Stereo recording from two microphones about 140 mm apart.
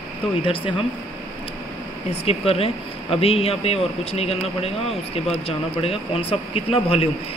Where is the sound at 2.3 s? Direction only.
45° left (ahead or behind).